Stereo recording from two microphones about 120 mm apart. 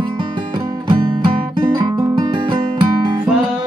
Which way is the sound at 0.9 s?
45° right (ahead or behind).